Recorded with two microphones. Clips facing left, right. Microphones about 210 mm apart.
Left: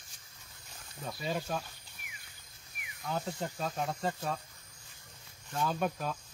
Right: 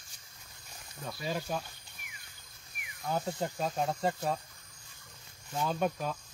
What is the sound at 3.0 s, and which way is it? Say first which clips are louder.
Speech: right 3 dB; 30° right (ahead or behind).